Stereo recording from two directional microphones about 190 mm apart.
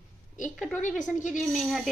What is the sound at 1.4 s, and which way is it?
Speech, centre (ahead or behind).